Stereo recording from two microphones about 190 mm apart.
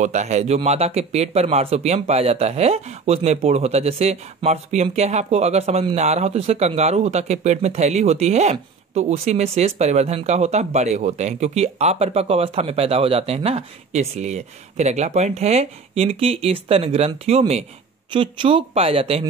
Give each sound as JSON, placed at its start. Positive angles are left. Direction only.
{"t": 0.0, "sound": "speech", "side_deg": -40}